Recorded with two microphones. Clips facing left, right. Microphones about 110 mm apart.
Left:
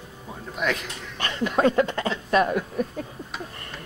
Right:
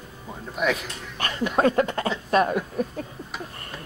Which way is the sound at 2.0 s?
25° right (ahead or behind).